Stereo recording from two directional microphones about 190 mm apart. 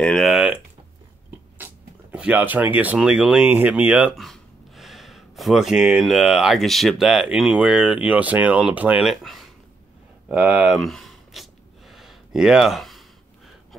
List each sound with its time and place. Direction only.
0.0 s speech: centre (ahead or behind)
1.6 s speech: 10° right (ahead or behind)
10.2 s gasp: centre (ahead or behind)